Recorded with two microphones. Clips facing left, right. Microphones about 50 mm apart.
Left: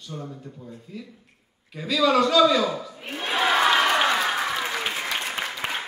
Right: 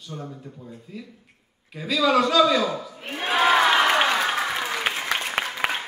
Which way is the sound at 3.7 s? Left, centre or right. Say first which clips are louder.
Right 1 dB; right.